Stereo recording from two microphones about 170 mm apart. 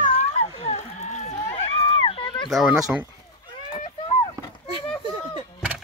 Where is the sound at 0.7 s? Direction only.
40° left (ahead or behind).